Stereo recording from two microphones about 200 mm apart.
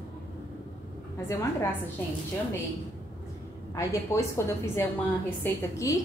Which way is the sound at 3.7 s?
15° left (ahead or behind).